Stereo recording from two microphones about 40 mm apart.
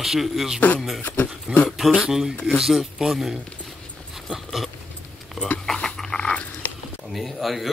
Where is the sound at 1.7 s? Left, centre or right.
Centre.